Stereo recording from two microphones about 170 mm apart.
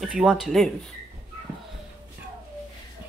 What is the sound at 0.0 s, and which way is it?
Speech, 5° right (ahead or behind).